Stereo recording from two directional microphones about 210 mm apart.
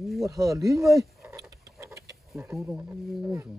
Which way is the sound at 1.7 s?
15° right (ahead or behind).